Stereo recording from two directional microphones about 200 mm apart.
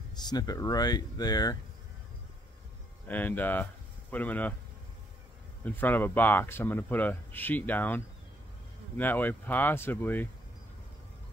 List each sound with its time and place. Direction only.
0.2 s speech: 20° left (ahead or behind)
3.1 s speech: 10° left (ahead or behind)
5.6 s speech: 10° left (ahead or behind)